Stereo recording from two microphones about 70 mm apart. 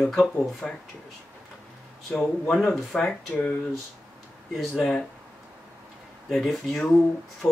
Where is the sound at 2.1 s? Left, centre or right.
Centre.